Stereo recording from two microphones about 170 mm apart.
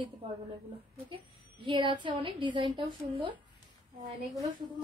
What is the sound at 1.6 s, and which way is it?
Speech, 30° right (ahead or behind).